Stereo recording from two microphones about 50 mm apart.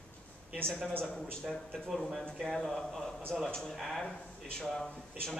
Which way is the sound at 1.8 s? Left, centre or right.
Centre.